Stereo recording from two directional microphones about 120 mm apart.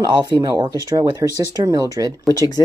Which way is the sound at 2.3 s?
30° left (ahead or behind).